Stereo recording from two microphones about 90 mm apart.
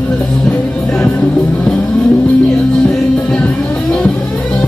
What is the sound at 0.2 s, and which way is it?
Music, 5° left (ahead or behind).